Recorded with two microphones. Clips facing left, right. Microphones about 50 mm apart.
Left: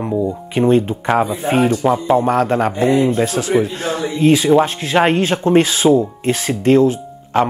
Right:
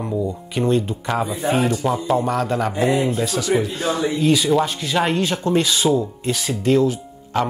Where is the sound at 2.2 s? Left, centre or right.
Left.